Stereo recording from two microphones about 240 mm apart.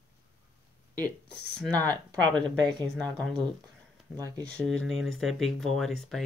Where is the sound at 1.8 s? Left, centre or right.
Centre.